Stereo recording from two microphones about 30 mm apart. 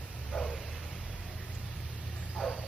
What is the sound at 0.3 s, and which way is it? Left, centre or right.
Bow-wow, centre.